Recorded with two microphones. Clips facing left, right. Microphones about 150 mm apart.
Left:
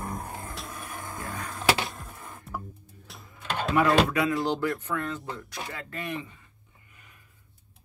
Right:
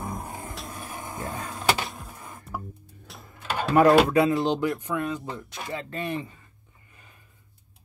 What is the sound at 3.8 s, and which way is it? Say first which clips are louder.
Speech: right 6 dB; 45° right (ahead or behind).